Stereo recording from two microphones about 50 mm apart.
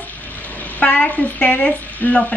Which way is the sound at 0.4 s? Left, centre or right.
Left.